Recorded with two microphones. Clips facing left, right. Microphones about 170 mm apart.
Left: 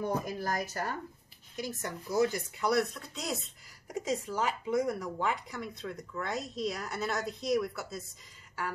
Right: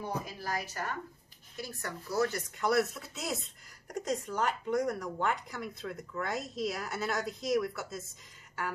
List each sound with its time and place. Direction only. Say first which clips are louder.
0.0 s speech: left 5 dB; 50° left (ahead or behind)
1.6 s speech: left 3 dB; 20° left (ahead or behind)
2.5 s speech: even; centre (ahead or behind)